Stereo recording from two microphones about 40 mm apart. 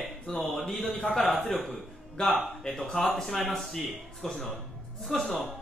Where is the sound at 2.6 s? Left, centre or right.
Centre.